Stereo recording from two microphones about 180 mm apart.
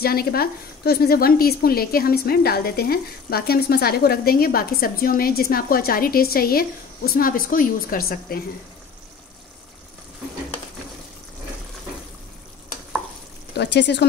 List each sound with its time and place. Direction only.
0.0 s a woman's voice: 55° left (ahead or behind)
13.6 s speech: 70° left (ahead or behind)